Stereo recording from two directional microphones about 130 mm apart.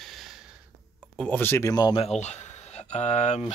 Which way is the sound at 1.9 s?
50° left (ahead or behind).